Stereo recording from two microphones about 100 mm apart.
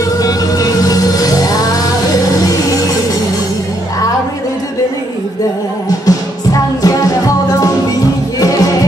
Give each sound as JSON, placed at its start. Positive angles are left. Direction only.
{"t": 0.2, "sound": "music", "side_deg": 40}
{"t": 5.9, "sound": "music", "side_deg": 35}